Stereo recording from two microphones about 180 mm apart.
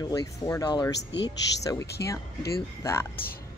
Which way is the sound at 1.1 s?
80° left.